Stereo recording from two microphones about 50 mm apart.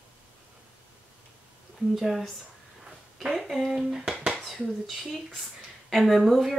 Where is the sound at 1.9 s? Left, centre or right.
Centre.